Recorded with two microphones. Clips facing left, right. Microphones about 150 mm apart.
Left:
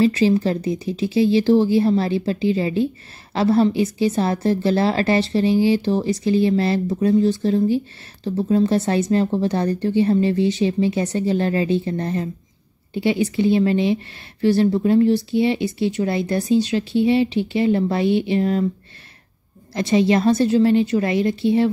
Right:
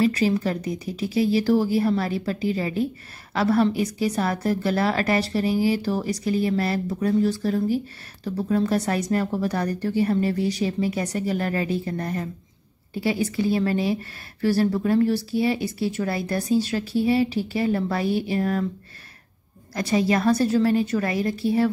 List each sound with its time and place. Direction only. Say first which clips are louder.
0.0 s a woman's voice: left 4 dB; 25° left (ahead or behind)
13.4 s a woman's voice: left 6 dB; 25° left (ahead or behind)
19.7 s a woman's voice: left 5 dB; 25° left (ahead or behind)